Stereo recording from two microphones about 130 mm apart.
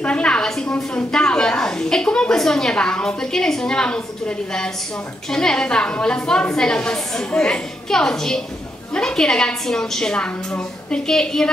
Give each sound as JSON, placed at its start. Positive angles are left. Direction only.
{"t": 0.0, "sound": "a woman's voice", "side_deg": 10}